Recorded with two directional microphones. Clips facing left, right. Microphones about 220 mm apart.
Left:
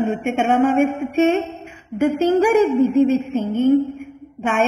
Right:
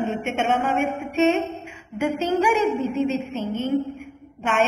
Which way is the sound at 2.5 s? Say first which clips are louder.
Left 7 dB; 50° left (ahead or behind).